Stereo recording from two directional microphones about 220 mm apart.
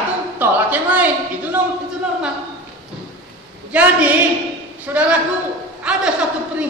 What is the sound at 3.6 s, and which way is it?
A woman's voice, 5° right (ahead or behind).